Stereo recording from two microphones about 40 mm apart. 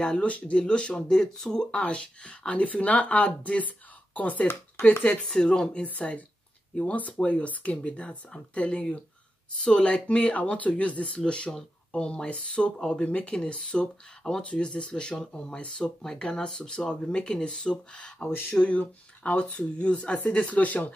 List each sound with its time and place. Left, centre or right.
0.0 s speech: left
1.7 s speech: left
5.3 s speech: left
5.9 s speech: left
9.6 s speech: centre
9.8 s speech: left